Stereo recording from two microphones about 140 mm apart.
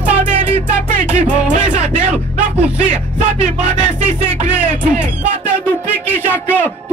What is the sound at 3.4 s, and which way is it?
Music, 50° right (ahead or behind).